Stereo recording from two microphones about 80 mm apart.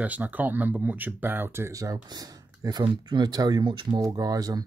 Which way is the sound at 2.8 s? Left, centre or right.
Right.